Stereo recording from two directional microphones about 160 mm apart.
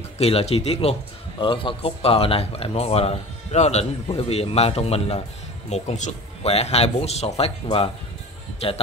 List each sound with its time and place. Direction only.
0.2 s speech: 40° left (ahead or behind)